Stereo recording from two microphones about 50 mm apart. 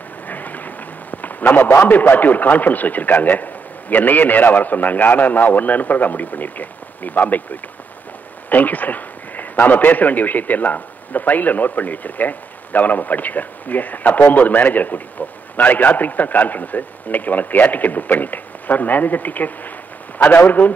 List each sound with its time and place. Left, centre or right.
0.3 s a sound: left
2.0 s a man's voice: left
8.5 s a man's voice: left